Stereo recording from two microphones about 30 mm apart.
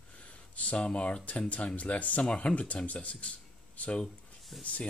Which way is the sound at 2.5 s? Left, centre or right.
Left.